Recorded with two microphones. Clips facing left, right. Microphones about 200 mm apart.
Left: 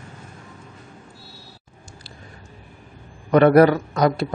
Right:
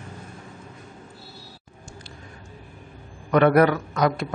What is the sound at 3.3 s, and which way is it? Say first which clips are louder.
A man's voice: left 4 dB; 35° left (ahead or behind).